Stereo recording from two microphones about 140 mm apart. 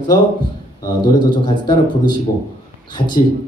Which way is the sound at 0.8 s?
30° left (ahead or behind).